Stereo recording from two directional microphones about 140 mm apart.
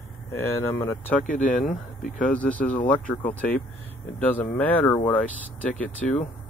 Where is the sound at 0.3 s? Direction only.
20° left (ahead or behind).